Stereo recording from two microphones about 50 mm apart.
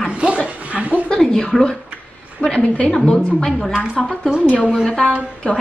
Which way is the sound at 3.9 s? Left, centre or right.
Centre.